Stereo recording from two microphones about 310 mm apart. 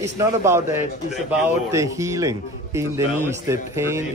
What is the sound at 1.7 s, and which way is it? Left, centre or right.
A man's voice, centre.